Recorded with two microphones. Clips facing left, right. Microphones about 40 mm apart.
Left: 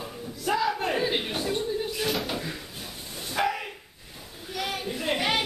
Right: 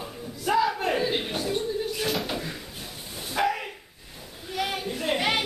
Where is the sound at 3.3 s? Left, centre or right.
Centre.